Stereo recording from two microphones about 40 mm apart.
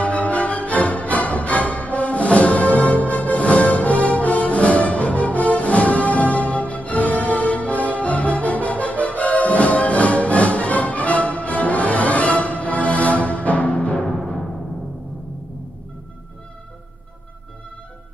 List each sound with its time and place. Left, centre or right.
0.0 s music: left